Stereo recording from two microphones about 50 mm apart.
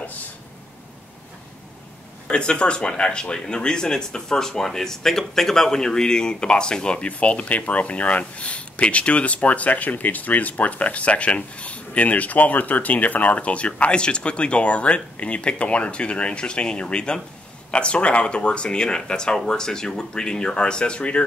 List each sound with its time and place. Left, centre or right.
2.2 s speech: centre